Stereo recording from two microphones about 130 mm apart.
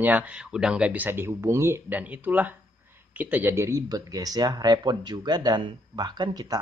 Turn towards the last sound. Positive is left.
turn(degrees=-30)  # may be behind; listen again after turning